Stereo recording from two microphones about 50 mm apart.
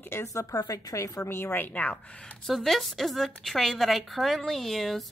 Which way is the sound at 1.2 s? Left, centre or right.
Left.